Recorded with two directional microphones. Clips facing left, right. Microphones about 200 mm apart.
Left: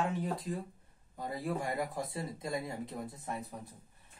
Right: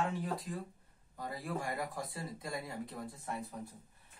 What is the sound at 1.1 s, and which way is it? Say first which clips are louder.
Speech: left 4 dB; 25° left (ahead or behind).